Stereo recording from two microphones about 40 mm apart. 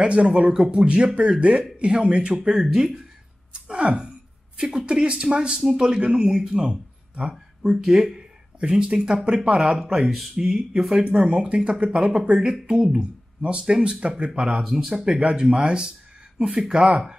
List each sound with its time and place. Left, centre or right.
0.0 s speech: right
2.6 s speech: centre
3.5 s speech: right
7.7 s speech: centre
10.0 s speech: centre
11.1 s speech: right
14.9 s speech: centre